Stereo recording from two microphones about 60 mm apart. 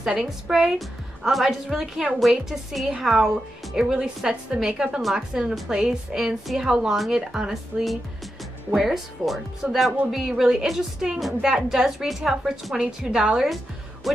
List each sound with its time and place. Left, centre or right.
0.2 s a woman's voice: centre
7.7 s speech: right
8.7 s a woman's voice: centre